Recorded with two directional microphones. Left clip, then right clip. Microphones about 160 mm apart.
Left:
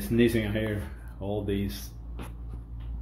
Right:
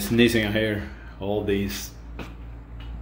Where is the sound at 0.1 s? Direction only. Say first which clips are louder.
Right 5 dB; 5° right (ahead or behind).